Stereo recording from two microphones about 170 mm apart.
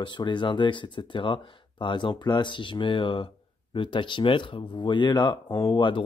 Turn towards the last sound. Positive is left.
turn(degrees=30)  # may be behind; listen again after turning